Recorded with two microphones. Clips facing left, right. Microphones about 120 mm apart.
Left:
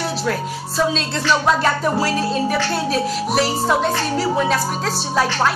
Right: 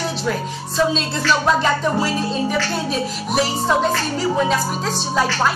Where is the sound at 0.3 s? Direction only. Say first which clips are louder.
Left 1 dB; 5° right (ahead or behind).